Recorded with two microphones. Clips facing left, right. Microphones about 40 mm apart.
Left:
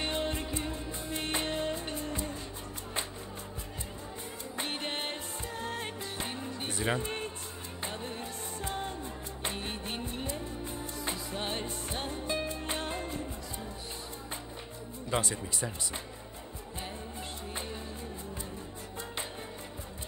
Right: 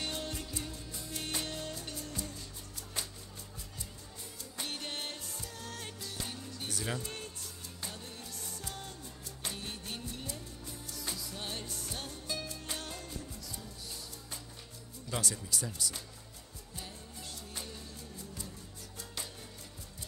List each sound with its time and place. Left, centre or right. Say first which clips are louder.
0.0 s music: left 6 dB; left
4.6 s music: left 5 dB; left
15.0 s speech: left 5 dB; left